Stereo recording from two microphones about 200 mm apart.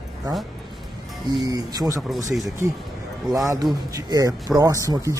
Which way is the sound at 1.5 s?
15° right (ahead or behind).